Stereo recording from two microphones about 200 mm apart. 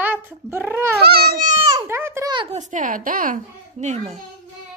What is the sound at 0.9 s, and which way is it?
Cat, 50° right (ahead or behind).